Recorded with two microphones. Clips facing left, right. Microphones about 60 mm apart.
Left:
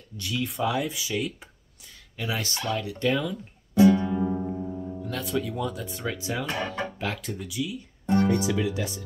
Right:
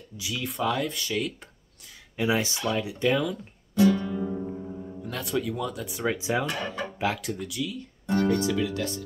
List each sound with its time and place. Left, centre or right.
0.2 s speech: centre
2.1 s speech: centre
3.1 s speech: centre
3.7 s music: left
5.0 s speech: centre
6.0 s speech: centre
7.0 s speech: centre
8.1 s speech: left
8.4 s speech: centre